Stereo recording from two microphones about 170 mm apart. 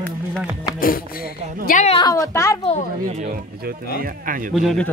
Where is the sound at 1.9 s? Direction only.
25° left (ahead or behind).